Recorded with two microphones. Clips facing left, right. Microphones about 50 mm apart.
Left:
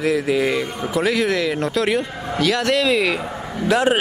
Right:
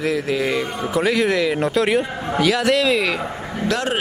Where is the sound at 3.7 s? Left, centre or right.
Centre.